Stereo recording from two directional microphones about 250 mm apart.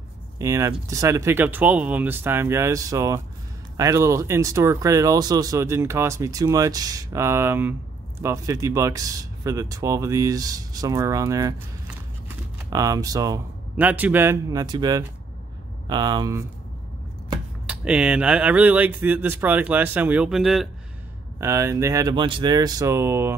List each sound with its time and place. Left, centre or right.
0.4 s speech: centre
17.6 s speech: centre